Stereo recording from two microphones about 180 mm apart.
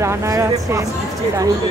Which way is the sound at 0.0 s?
15° right (ahead or behind).